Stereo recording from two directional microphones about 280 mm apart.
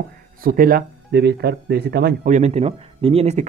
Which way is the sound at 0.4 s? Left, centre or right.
Right.